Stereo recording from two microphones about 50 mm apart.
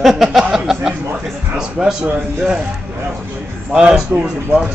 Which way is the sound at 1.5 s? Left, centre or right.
Centre.